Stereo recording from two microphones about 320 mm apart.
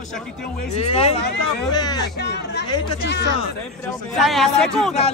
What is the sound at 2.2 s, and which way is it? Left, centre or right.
Speech, left.